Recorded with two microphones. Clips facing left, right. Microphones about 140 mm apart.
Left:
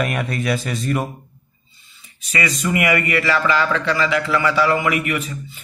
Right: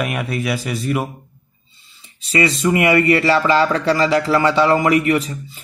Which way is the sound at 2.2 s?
30° right (ahead or behind).